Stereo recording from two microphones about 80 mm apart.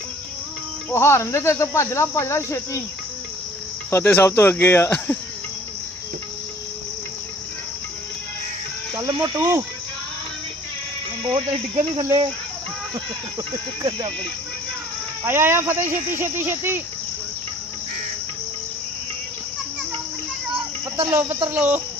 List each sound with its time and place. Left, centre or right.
0.8 s cricket: left
3.9 s speech: left
4.9 s cricket: centre
9.0 s speech: right
9.4 s speech: right
11.2 s insect: right
13.5 s insect: right
15.2 s speech: right
21.1 s speech: right